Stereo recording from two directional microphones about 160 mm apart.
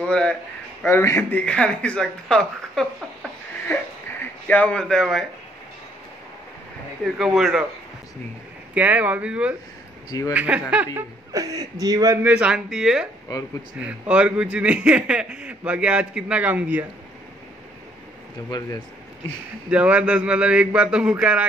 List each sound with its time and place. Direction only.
0.0 s a sound: 5° left (ahead or behind)
0.8 s speech: 15° left (ahead or behind)
4.5 s a man's voice: 10° left (ahead or behind)
7.1 s a man's voice: centre (ahead or behind)
8.7 s speech: 10° right (ahead or behind)
11.0 s laughter: 20° right (ahead or behind)
11.8 s speech: 20° right (ahead or behind)
18.5 s speech: 25° left (ahead or behind)
19.7 s speech: 5° right (ahead or behind)